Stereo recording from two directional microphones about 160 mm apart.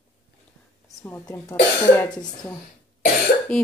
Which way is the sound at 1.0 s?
15° left (ahead or behind).